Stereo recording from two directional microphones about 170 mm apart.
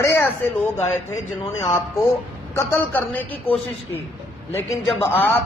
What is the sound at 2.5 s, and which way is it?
Speech, 10° left (ahead or behind).